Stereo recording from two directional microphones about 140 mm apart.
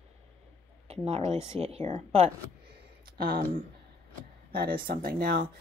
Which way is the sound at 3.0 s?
90° right.